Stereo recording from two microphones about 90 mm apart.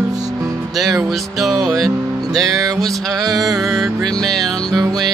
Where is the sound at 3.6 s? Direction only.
Centre (ahead or behind).